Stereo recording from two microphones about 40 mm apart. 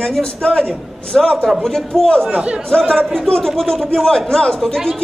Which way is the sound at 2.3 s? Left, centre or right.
Right.